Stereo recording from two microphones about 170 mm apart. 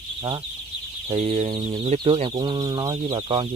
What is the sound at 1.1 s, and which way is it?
Speech, 35° right (ahead or behind).